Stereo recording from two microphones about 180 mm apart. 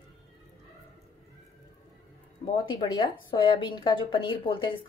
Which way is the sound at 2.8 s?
25° left (ahead or behind).